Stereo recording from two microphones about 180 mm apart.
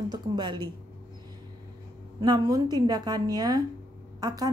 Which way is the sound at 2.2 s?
20° right (ahead or behind).